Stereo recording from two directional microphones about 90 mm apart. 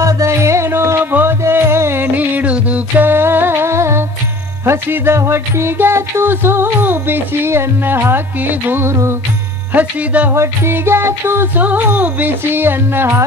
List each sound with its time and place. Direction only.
0.0 s music: 35° right (ahead or behind)
9.8 s speech: 20° right (ahead or behind)
10.3 s music: 30° right (ahead or behind)